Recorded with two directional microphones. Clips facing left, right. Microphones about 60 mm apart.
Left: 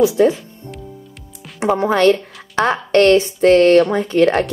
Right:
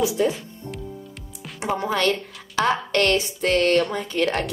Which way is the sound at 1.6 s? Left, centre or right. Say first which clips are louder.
Left 8 dB; left.